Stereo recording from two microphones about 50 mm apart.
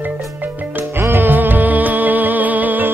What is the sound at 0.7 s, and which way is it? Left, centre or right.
Music, right.